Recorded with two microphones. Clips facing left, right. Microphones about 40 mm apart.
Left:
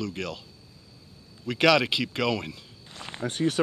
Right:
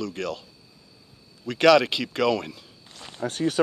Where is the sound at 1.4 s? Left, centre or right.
Centre.